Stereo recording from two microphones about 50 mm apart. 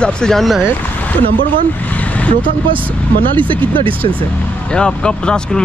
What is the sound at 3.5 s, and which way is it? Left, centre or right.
Speech, left.